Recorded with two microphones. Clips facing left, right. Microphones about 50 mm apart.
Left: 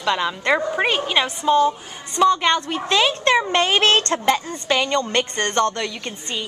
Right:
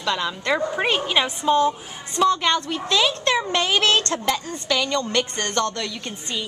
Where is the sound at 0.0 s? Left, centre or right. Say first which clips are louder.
Left 3 dB; centre.